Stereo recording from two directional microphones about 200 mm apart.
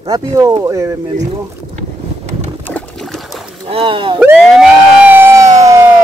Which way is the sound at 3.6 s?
25° right (ahead or behind).